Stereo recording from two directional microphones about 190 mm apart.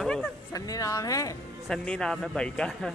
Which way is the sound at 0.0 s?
5° left (ahead or behind).